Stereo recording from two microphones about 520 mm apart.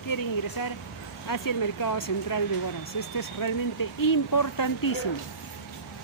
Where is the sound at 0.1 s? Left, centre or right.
Left.